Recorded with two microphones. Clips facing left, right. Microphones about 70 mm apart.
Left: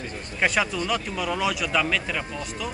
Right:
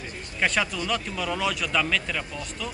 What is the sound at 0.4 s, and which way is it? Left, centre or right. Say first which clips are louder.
A man's voice: left 2 dB; centre.